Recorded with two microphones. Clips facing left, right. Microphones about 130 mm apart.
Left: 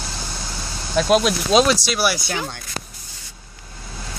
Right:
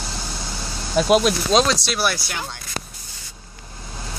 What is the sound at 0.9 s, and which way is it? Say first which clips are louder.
Speech: even; 5° right (ahead or behind).